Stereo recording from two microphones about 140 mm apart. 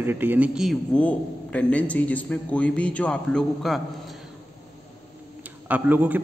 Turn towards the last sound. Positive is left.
turn(degrees=-10)  # may be behind; listen again after turning